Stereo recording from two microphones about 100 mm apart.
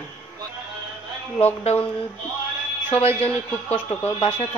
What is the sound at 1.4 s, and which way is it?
Speech, 90° left.